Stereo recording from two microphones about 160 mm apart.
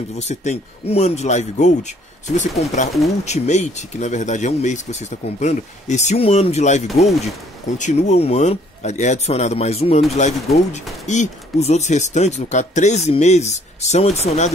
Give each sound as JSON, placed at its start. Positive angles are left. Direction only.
{"t": 0.2, "sound": "speech", "side_deg": 45}